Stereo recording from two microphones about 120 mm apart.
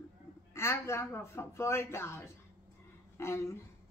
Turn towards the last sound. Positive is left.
turn(degrees=20)  # may be behind; listen again after turning